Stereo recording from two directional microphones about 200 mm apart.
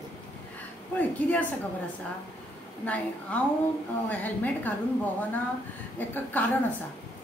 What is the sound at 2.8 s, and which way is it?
A woman's voice, 5° left (ahead or behind).